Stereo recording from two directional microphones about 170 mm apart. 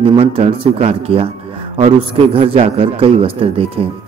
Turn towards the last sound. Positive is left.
turn(degrees=-35)  # may be behind; listen again after turning